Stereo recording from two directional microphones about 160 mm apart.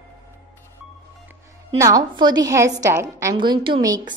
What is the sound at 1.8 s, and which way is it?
A woman's voice, 20° right (ahead or behind).